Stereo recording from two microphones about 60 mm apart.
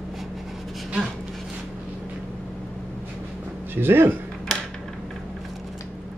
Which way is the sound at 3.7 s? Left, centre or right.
Right.